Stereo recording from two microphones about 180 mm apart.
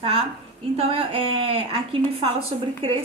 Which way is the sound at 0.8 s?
30° right (ahead or behind).